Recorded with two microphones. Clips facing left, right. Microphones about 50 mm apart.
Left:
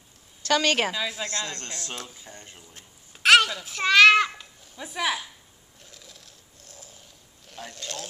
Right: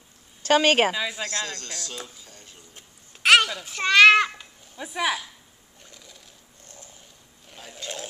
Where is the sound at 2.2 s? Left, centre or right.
Left.